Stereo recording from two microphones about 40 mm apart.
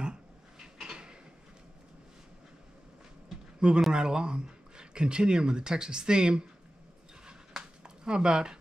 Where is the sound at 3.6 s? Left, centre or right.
Right.